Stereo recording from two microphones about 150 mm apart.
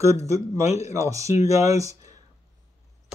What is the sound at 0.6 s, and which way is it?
Speech, 45° left (ahead or behind).